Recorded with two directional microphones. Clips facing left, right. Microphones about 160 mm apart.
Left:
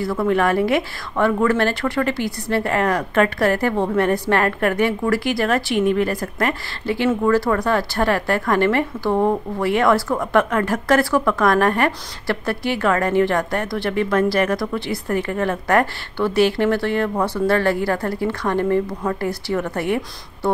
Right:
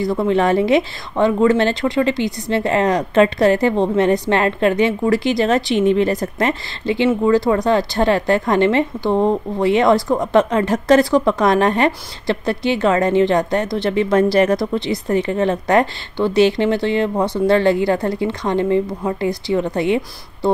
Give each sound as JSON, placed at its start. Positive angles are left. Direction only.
{"t": 0.0, "sound": "a woman's voice", "side_deg": -20}